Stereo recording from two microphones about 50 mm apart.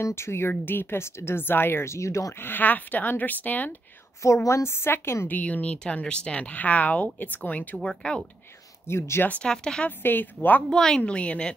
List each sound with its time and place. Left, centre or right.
0.0 s a woman's voice: left
0.5 s speech: left
2.4 s speech: left
4.2 s a woman's voice: left
5.3 s speech: left
7.8 s speech: centre
8.8 s a woman's voice: left
9.4 s speech: centre
9.8 s speech: left
10.7 s speech: centre
11.0 s speech: left